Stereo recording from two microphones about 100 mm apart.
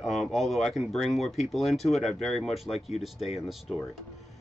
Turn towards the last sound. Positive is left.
turn(degrees=0)  # may be behind; listen again after turning